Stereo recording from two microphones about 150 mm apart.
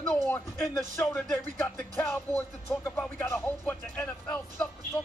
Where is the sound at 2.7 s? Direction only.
10° left (ahead or behind).